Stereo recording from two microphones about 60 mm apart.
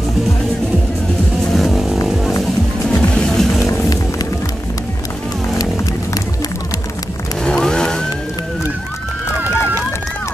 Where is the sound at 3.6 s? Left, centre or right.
Left.